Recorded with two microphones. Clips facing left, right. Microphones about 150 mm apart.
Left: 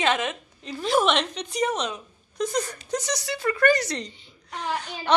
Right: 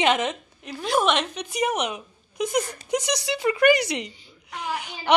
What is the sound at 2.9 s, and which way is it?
A woman's voice, 10° right (ahead or behind).